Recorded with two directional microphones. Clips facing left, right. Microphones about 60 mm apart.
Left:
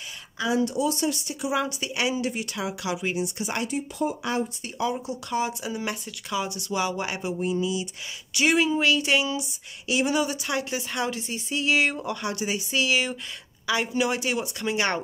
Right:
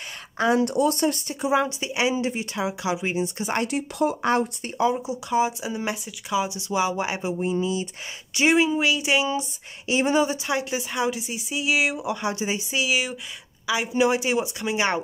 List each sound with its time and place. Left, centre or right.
0.4 s speech: right
3.6 s speech: right
4.6 s speech: right
4.9 s speech: centre
7.5 s speech: right
8.4 s speech: right
10.7 s speech: centre
12.2 s speech: right
12.8 s speech: centre
13.9 s speech: right